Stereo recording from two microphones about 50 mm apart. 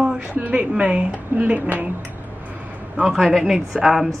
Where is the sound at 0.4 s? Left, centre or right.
Right.